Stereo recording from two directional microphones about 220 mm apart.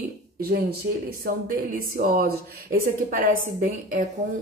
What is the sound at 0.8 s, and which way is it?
Speech, 50° right (ahead or behind).